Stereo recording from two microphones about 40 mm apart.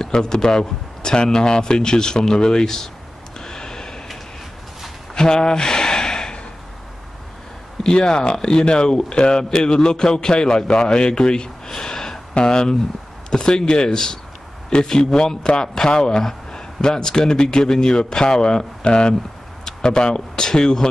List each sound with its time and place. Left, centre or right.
0.0 s a man's voice: centre
3.3 s gasp: centre
5.1 s gasp: centre
7.8 s a man's voice: centre